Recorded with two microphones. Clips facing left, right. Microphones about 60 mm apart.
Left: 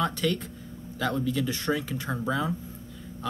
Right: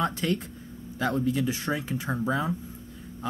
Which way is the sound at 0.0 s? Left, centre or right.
Centre.